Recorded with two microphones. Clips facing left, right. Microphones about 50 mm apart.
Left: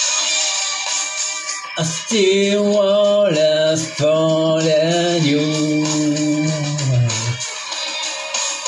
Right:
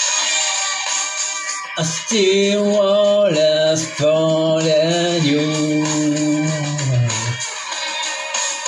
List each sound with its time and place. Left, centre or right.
0.0 s music: right
1.8 s music: centre
4.6 s mantra: centre
5.0 s music: centre
6.2 s music: centre